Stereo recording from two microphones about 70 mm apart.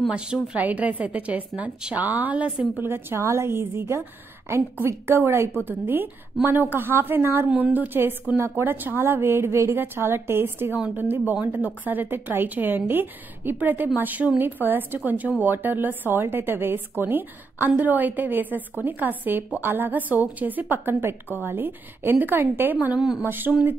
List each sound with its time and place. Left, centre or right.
0.1 s a woman's voice: centre
2.8 s a woman's voice: right
22.9 s a woman's voice: centre
23.2 s a woman's voice: right